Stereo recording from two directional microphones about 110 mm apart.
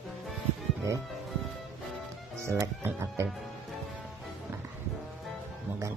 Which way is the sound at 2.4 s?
25° right (ahead or behind).